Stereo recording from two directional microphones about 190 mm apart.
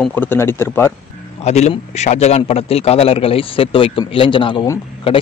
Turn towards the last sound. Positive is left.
turn(degrees=20)  # may be behind; listen again after turning